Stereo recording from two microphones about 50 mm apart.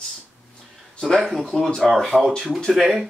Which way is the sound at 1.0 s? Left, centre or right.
Centre.